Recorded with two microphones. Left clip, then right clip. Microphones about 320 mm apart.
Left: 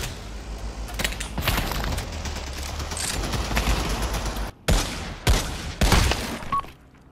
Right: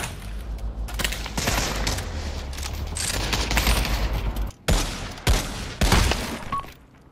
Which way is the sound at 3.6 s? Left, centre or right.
Centre.